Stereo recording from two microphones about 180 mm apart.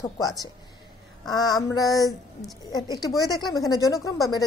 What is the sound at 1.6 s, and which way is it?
Speech, 20° left (ahead or behind).